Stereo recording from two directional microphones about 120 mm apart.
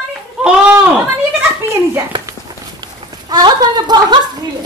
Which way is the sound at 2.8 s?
35° right (ahead or behind).